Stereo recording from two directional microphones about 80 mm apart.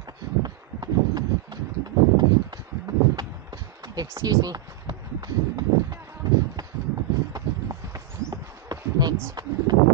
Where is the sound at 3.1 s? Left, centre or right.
Right.